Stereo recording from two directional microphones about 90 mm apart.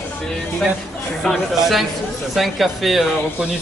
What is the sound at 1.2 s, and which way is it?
A man's voice, centre (ahead or behind).